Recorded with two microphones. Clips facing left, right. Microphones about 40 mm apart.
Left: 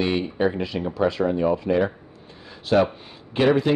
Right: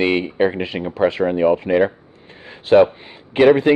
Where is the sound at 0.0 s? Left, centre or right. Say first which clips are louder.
Right 5 dB; right.